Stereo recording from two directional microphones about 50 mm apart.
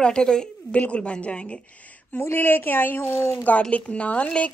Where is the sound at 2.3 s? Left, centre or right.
Left.